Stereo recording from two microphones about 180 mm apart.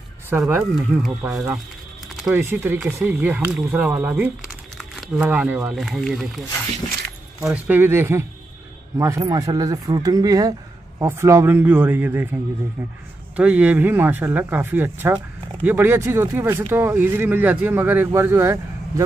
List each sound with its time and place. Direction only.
0.3 s speech: 15° right (ahead or behind)
13.4 s speech: 10° right (ahead or behind)